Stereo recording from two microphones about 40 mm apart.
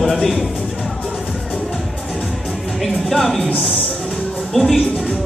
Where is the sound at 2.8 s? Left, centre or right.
Centre.